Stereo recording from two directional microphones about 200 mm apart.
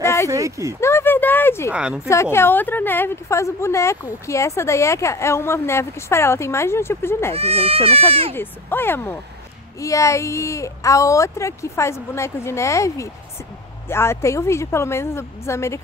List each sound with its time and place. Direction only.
0.0 s a sound: 15° left (ahead or behind)
0.3 s speech: 15° right (ahead or behind)
0.7 s a sound: 15° left (ahead or behind)
1.7 s speech: 5° right (ahead or behind)
2.0 s a woman's voice: 15° left (ahead or behind)
7.3 s speech: 30° right (ahead or behind)
8.4 s a woman's voice: 10° left (ahead or behind)